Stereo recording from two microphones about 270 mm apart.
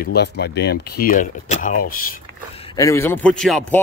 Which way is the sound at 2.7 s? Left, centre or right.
Centre.